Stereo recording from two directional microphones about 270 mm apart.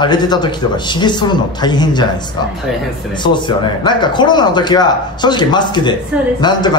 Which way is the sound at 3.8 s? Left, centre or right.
Centre.